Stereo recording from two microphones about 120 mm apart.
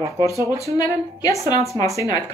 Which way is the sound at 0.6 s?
30° left (ahead or behind).